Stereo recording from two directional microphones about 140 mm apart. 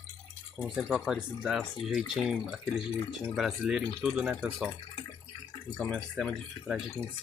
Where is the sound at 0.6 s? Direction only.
Centre (ahead or behind).